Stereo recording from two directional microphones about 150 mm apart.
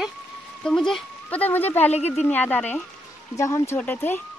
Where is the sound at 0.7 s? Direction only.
Centre (ahead or behind).